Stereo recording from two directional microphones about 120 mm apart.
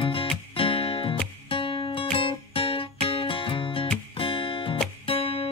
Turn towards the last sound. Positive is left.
turn(degrees=50)  # may be behind; listen again after turning